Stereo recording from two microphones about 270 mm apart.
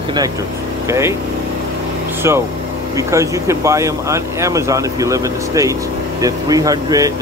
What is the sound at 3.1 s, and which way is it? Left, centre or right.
Speech, centre.